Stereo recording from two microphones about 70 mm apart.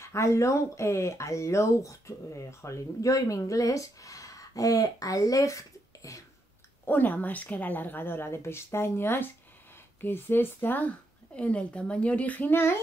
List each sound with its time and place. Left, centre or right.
0.0 s speech: left
6.9 s speech: left